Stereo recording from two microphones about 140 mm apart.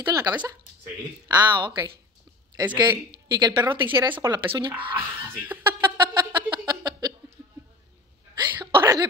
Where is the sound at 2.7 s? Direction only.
30° right (ahead or behind).